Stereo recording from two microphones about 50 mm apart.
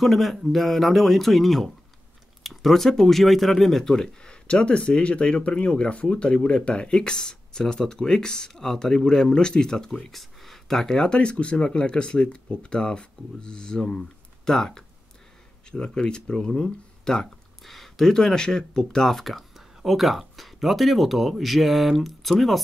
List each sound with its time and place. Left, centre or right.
0.0 s speech: centre